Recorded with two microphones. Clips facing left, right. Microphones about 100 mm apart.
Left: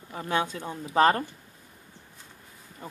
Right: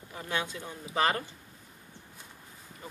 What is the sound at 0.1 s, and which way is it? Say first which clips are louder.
Speech: left 6 dB; 40° left (ahead or behind).